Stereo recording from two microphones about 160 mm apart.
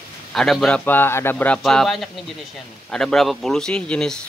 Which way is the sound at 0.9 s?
15° left (ahead or behind).